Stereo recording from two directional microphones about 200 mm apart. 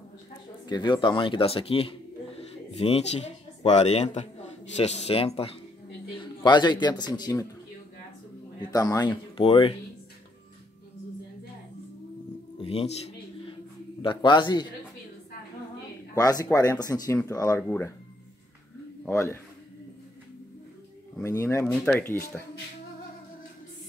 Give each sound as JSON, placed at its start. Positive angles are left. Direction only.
{"t": 0.7, "sound": "speech", "side_deg": 20}
{"t": 8.6, "sound": "speech", "side_deg": 20}
{"t": 12.5, "sound": "a man's voice", "side_deg": 30}
{"t": 14.0, "sound": "speech", "side_deg": 25}
{"t": 16.2, "sound": "speech", "side_deg": 20}
{"t": 19.0, "sound": "speech", "side_deg": 10}
{"t": 21.2, "sound": "speech", "side_deg": 15}